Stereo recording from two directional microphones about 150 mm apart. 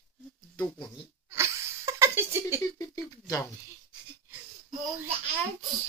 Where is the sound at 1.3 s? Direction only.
20° right (ahead or behind).